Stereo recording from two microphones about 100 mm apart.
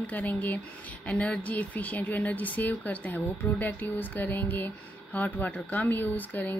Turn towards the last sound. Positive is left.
turn(degrees=20)  # may be behind; listen again after turning